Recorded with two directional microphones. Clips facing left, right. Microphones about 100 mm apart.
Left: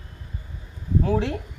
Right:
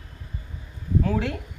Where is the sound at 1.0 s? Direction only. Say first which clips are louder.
Left 3 dB; 30° left (ahead or behind).